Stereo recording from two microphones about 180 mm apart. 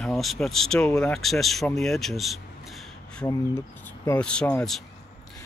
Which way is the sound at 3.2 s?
15° left (ahead or behind).